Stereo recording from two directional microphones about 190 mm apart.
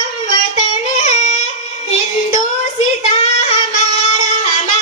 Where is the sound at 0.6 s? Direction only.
40° left (ahead or behind).